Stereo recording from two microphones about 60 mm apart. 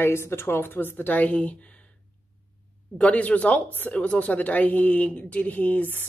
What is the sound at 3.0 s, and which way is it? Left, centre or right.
A woman's voice, left.